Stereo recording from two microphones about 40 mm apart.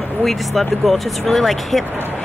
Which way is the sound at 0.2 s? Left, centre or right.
Centre.